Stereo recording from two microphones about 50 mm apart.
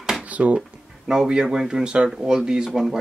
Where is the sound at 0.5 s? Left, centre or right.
Centre.